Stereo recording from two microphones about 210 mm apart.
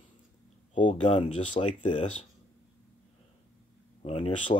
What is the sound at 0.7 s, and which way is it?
Speech, 35° left (ahead or behind).